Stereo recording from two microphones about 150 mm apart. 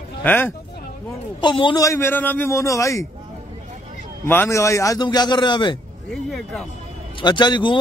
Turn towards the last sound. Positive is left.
turn(degrees=30)  # may be behind; listen again after turning